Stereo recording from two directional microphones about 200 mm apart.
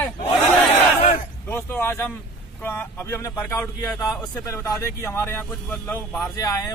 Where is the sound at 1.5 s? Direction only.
10° left (ahead or behind).